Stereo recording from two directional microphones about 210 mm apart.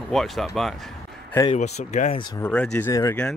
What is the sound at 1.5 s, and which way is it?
Speech, 30° left (ahead or behind).